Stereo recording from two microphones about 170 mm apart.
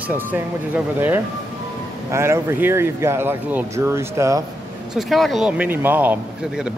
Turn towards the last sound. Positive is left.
turn(degrees=-5)  # may be behind; listen again after turning